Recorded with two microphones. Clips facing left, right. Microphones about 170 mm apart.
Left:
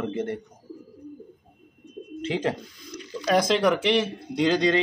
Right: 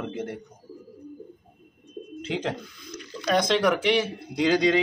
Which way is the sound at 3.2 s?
5° left (ahead or behind).